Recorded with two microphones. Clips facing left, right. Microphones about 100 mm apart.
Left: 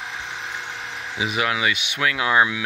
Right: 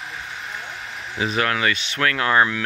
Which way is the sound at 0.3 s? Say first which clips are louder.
Left 1 dB; 90° left.